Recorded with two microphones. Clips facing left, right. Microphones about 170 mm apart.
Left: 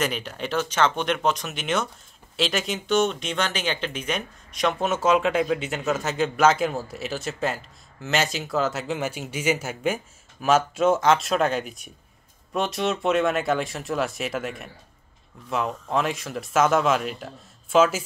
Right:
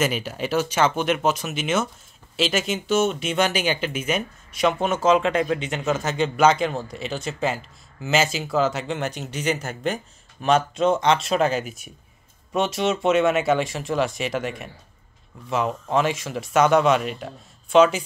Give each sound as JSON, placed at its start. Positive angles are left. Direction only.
{"t": 0.0, "sound": "speech", "side_deg": -5}